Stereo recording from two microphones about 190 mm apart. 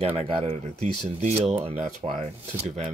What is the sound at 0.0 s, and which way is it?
Speech, 30° right (ahead or behind).